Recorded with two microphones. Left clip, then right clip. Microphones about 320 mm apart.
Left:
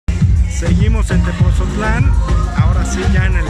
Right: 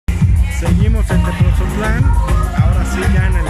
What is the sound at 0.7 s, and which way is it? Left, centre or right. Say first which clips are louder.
Speech: left 1 dB; centre.